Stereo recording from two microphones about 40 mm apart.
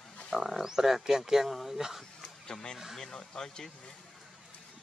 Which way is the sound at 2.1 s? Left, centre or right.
Centre.